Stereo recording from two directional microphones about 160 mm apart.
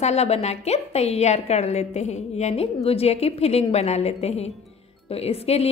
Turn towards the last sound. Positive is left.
turn(degrees=40)  # may be behind; listen again after turning